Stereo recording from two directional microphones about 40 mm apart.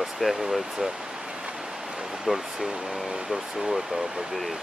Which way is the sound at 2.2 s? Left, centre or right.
Centre.